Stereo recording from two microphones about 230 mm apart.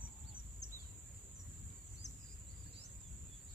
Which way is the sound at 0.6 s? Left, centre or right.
Left.